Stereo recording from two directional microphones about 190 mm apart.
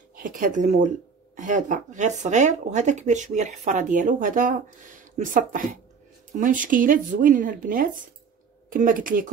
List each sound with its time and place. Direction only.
0.1 s speech: 45° right (ahead or behind)